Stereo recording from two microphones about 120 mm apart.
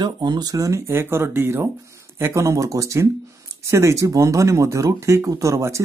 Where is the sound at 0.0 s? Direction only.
35° right (ahead or behind).